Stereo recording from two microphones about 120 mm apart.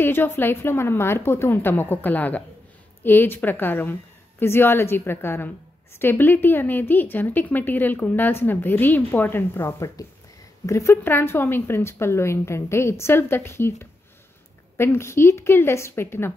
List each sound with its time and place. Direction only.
0.0 s a woman's voice: 15° left (ahead or behind)